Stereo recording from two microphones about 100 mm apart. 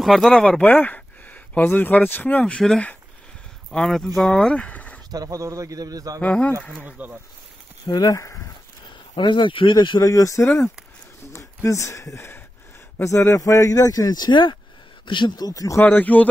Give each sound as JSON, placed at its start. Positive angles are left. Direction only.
{"t": 0.0, "sound": "speech", "side_deg": 0}
{"t": 5.1, "sound": "a man's voice", "side_deg": -35}
{"t": 6.2, "sound": "speech", "side_deg": 10}
{"t": 6.8, "sound": "speech", "side_deg": -15}
{"t": 7.8, "sound": "speech", "side_deg": 40}
{"t": 9.1, "sound": "speech", "side_deg": 55}
{"t": 15.8, "sound": "speech", "side_deg": 15}